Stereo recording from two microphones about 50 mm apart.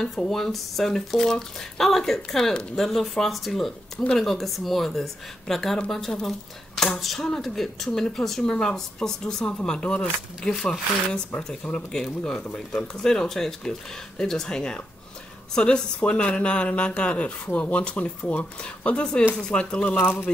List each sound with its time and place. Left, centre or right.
0.2 s speech: centre
12.5 s speech: centre